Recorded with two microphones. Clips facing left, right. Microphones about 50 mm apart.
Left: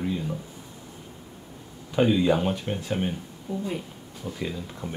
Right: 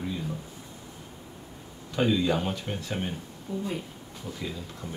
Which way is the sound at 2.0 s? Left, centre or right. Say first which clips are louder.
Left 4 dB; left.